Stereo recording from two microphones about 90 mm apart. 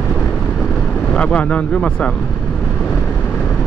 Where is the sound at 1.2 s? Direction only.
15° left (ahead or behind).